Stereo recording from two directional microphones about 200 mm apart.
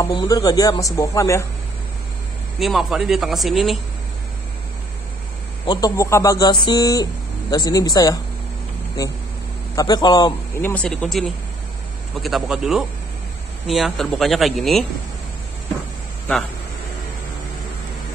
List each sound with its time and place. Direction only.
0.1 s speech: 20° left (ahead or behind)
2.6 s speech: centre (ahead or behind)
5.7 s speech: 20° left (ahead or behind)
9.8 s a man's voice: 20° left (ahead or behind)
10.6 s speech: 5° left (ahead or behind)